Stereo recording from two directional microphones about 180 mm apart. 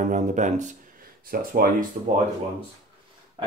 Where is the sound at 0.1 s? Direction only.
45° right (ahead or behind).